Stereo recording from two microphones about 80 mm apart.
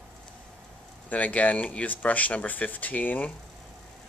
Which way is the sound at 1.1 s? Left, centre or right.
Centre.